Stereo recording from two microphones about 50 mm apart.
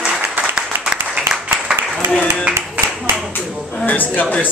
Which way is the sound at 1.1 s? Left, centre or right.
Centre.